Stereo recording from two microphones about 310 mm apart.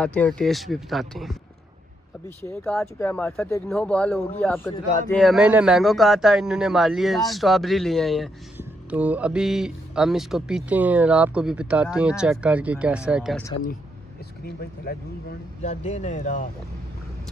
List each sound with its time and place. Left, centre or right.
0.0 s speech: centre
14.4 s speech: left